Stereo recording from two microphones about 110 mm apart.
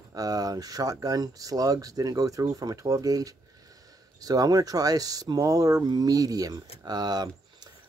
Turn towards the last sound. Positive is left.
turn(degrees=-40)  # may be behind; listen again after turning